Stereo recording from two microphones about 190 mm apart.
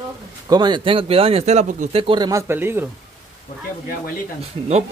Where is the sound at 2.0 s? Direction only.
20° right (ahead or behind).